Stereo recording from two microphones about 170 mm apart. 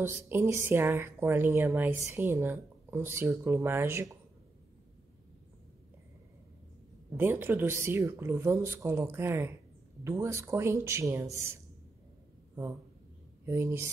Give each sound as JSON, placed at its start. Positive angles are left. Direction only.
{"t": 0.0, "sound": "speech", "side_deg": -15}
{"t": 7.2, "sound": "speech", "side_deg": -10}
{"t": 13.5, "sound": "speech", "side_deg": -15}